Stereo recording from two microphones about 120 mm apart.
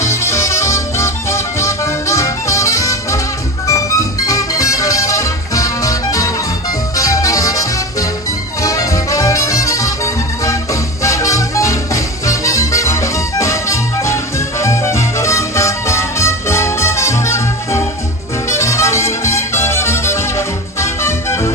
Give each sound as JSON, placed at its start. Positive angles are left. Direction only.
{"t": 0.0, "sound": "music", "side_deg": 25}